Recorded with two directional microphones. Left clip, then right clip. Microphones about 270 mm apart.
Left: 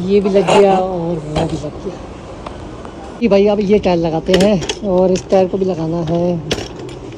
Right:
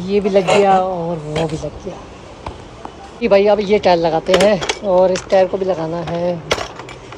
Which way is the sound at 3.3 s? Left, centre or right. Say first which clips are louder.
Even; right.